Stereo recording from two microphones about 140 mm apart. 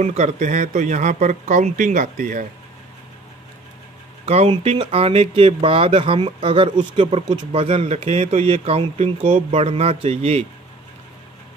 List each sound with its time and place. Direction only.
0.0 s speech: 55° right (ahead or behind)
4.3 s speech: 45° right (ahead or behind)